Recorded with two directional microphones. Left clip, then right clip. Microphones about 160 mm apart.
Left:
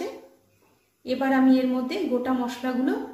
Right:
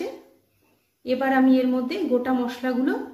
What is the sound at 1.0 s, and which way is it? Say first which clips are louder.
A woman's voice: right 2 dB; 55° right (ahead or behind).